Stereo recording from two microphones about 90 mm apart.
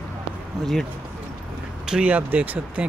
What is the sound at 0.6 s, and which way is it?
Speech, 5° left (ahead or behind).